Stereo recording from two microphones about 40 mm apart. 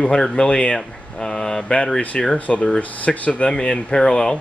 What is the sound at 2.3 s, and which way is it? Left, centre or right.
Speech, left.